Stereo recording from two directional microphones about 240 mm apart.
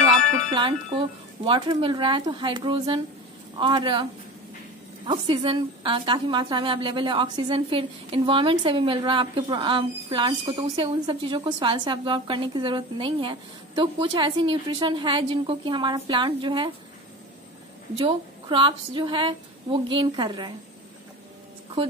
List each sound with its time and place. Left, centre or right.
0.5 s a woman's voice: centre
17.9 s a woman's voice: right